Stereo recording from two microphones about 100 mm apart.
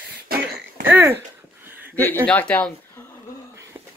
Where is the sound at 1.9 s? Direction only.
20° left (ahead or behind).